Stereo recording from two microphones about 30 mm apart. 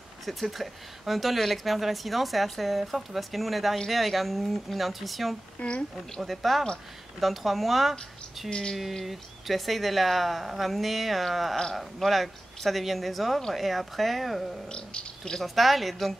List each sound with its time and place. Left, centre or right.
0.2 s a woman's voice: centre
5.6 s speech: left
6.2 s a woman's voice: centre
8.5 s a sound: left
9.0 s a woman's voice: centre
14.7 s speech: left
15.4 s a woman's voice: centre